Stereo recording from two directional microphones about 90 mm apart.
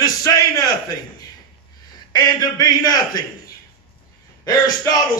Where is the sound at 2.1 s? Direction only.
45° left (ahead or behind).